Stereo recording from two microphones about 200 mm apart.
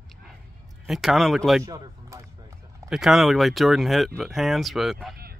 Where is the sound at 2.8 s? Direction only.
Centre (ahead or behind).